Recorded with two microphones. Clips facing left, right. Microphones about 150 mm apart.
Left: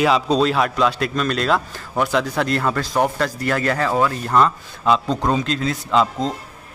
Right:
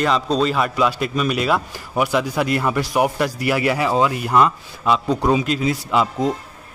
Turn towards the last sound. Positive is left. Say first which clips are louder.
# even
turn(degrees=-10)  # may be behind; listen again after turning